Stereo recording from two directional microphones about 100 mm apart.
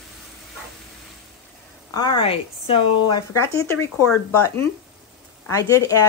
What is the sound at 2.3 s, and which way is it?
Speech, 70° left (ahead or behind).